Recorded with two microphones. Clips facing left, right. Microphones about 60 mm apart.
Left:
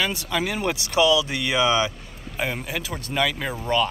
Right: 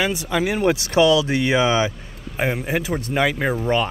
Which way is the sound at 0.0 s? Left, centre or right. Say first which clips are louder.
Right 4 dB; centre.